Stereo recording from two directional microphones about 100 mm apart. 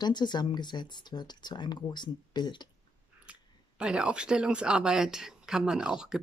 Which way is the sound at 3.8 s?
10° right (ahead or behind).